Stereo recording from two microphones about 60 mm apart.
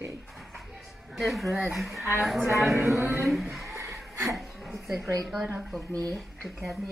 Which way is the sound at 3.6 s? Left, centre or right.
Right.